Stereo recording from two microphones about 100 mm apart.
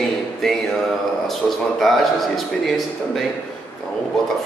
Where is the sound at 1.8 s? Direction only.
Centre (ahead or behind).